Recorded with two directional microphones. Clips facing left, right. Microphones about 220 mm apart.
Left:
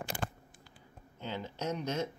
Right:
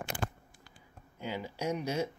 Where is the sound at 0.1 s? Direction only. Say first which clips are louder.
Right 3 dB; 45° left (ahead or behind).